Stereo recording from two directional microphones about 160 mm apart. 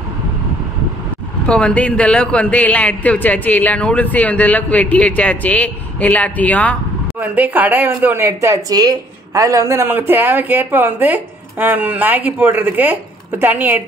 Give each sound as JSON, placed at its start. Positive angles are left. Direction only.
{"t": 1.5, "sound": "a man's voice", "side_deg": 5}
{"t": 7.2, "sound": "speech", "side_deg": -10}